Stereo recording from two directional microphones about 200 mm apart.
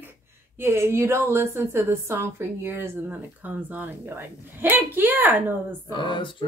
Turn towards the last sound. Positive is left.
turn(degrees=25)  # may be behind; listen again after turning